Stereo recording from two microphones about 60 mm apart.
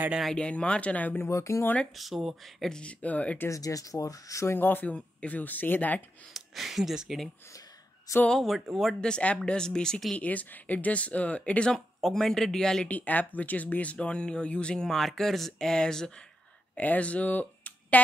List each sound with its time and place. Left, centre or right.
0.4 s speech: centre
1.3 s speech: left
2.0 s speech: centre
2.7 s speech: centre
3.4 s speech: left
4.6 s speech: left
6.3 s speech: centre
8.3 s speech: centre
9.1 s speech: left
9.4 s speech: centre
10.1 s speech: left
11.7 s speech: centre
12.8 s speech: left
16.7 s speech: left